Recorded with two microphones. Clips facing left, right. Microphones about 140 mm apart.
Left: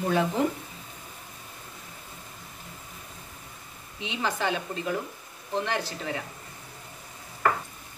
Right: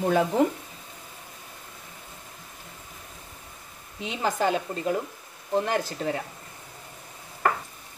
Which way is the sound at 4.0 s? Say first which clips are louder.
Right 3 dB; 45° right (ahead or behind).